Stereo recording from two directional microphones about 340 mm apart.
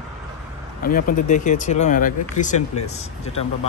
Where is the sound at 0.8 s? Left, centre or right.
Left.